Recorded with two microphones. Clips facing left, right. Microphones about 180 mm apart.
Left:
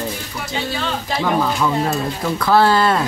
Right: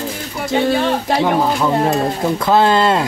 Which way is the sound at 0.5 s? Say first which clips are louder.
Right 9 dB; 55° right (ahead or behind).